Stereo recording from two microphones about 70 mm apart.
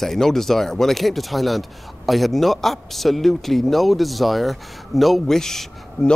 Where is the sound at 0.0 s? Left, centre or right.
Centre.